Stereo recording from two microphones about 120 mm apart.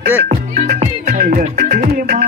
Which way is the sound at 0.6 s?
85° right.